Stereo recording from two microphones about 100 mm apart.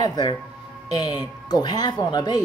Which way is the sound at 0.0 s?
45° left (ahead or behind).